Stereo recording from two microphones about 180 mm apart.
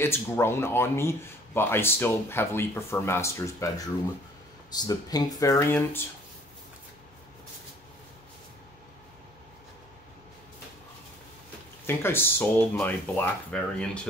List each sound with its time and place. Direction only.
0.0 s speech: 15° left (ahead or behind)
11.8 s speech: 10° left (ahead or behind)